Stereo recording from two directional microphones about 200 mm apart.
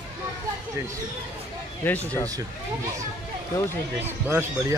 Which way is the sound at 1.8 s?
10° left (ahead or behind).